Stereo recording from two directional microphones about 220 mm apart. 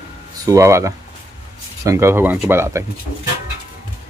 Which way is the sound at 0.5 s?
15° right (ahead or behind).